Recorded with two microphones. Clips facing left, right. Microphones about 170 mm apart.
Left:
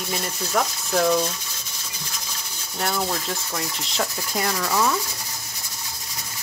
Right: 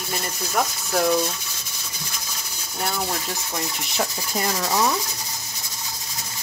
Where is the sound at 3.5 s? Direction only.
15° right (ahead or behind).